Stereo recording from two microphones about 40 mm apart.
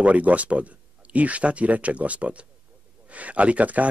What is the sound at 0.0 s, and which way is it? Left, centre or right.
Speech, right.